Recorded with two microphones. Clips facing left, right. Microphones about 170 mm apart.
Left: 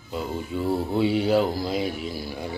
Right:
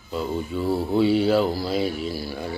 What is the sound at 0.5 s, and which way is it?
Speech, 15° left (ahead or behind).